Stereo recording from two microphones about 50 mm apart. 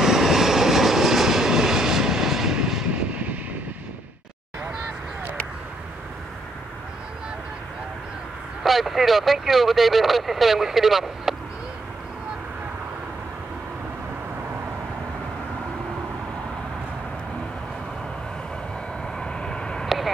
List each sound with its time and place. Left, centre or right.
0.0 s vehicle: centre
8.6 s speech: centre
19.1 s vehicle: centre